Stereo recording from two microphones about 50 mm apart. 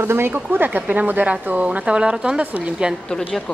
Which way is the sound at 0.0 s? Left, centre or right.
Right.